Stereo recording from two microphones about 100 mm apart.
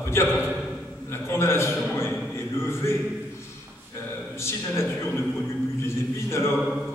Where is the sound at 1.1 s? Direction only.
25° left (ahead or behind).